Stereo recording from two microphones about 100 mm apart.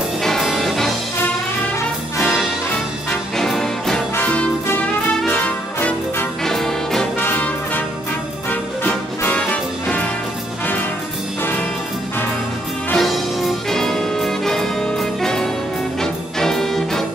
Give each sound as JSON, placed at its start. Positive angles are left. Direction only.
{"t": 0.2, "sound": "music", "side_deg": 0}
{"t": 3.3, "sound": "music", "side_deg": 5}
{"t": 4.1, "sound": "music", "side_deg": 15}
{"t": 6.4, "sound": "music", "side_deg": 5}
{"t": 7.2, "sound": "brass instrument", "side_deg": 20}
{"t": 8.5, "sound": "music", "side_deg": 15}
{"t": 12.9, "sound": "music", "side_deg": 0}